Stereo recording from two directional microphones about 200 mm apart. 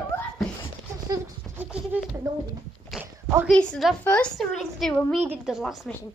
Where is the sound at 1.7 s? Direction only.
5° right (ahead or behind).